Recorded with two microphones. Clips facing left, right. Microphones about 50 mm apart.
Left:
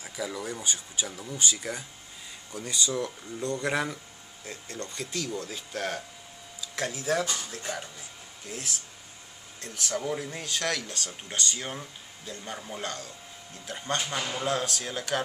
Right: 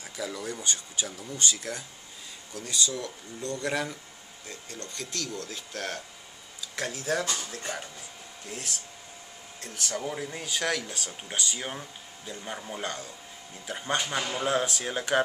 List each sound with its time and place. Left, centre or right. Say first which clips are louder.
0.0 s speech: left 1 dB; centre; by 15.2 s right